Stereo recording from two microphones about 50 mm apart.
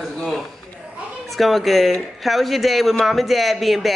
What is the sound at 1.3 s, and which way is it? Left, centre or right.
A man's voice, centre.